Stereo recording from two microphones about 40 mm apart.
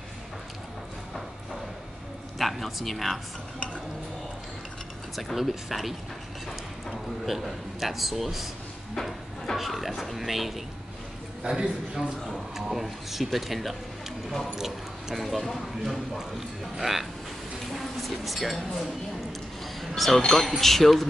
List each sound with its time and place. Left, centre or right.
2.3 s speech: centre
5.1 s speech: centre
8.9 s a sound: centre
9.6 s speech: centre
11.4 s a man's voice: centre
12.3 s speech: centre
19.6 s a sound: centre
20.3 s speech: centre